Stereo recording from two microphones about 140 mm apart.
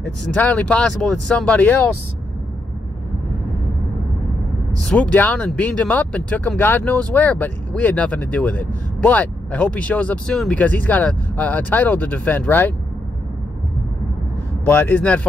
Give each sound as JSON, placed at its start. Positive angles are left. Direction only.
{"t": 0.0, "sound": "speech", "side_deg": 10}
{"t": 4.8, "sound": "speech", "side_deg": 10}
{"t": 14.7, "sound": "speech", "side_deg": 10}